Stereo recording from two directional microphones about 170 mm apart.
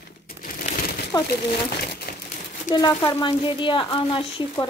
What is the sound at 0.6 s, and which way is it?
Crumpling, 55° left (ahead or behind).